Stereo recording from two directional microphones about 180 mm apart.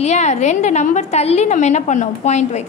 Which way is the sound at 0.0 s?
40° left (ahead or behind).